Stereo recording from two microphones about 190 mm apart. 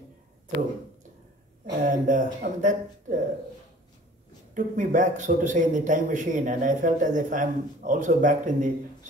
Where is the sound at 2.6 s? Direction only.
45° right (ahead or behind).